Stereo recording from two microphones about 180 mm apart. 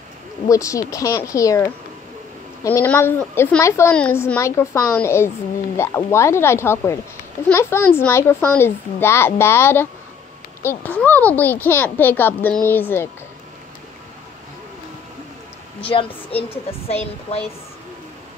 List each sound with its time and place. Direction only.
0.5 s a woman's voice: 20° left (ahead or behind)
15.8 s a woman's voice: 30° left (ahead or behind)